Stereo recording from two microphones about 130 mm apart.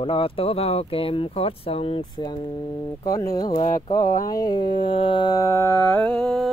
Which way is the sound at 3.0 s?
25° left (ahead or behind).